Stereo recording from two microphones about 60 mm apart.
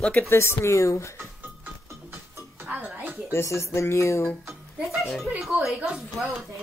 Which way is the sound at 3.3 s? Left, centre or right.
Left.